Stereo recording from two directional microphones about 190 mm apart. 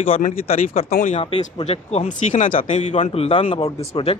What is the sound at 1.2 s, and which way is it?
Speech, 30° left (ahead or behind).